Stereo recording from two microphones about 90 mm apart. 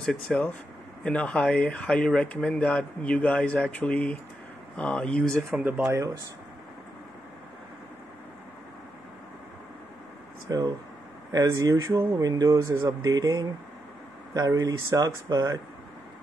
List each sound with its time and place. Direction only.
0.0 s speech: 10° left (ahead or behind)
5.5 s speech: 15° right (ahead or behind)
10.5 s speech: 40° right (ahead or behind)